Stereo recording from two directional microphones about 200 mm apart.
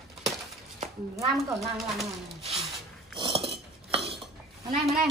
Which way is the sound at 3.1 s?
25° right (ahead or behind).